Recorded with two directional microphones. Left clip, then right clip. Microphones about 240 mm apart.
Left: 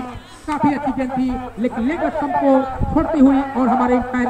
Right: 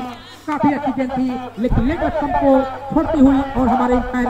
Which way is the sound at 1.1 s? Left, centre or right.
Right.